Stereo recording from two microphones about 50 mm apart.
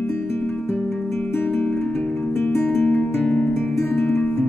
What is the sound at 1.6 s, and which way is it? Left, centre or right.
Music, left.